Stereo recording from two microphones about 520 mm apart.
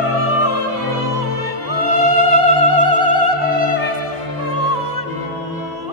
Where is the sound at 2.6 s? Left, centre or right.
Right.